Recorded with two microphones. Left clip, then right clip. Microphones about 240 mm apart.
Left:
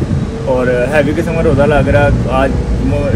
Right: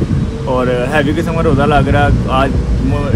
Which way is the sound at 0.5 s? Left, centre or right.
Centre.